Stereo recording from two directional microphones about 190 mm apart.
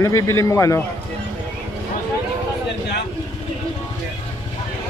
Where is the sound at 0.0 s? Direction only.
15° left (ahead or behind).